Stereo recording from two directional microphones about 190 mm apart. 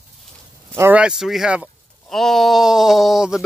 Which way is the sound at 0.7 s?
10° right (ahead or behind).